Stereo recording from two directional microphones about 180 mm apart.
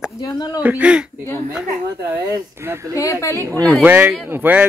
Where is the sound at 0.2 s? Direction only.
20° left (ahead or behind).